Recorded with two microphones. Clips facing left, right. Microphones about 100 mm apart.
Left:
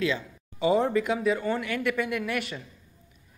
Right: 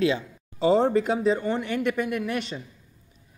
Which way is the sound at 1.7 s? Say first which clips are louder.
Right 2 dB; 20° right (ahead or behind).